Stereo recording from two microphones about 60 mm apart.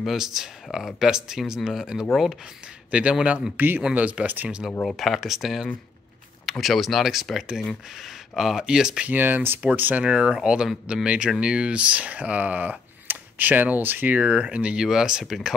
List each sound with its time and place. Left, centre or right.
0.0 s speech: centre
2.9 s speech: right
4.9 s speech: centre
9.0 s speech: right
10.0 s speech: centre; by 14.2 s right
14.2 s speech: centre